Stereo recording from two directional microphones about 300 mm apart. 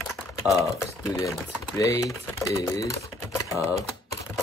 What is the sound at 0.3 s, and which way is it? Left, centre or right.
Speech, centre.